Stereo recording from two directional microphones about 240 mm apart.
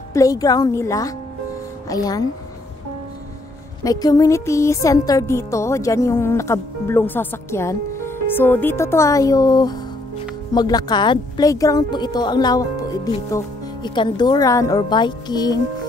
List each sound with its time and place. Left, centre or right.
0.1 s music: centre
3.8 s music: centre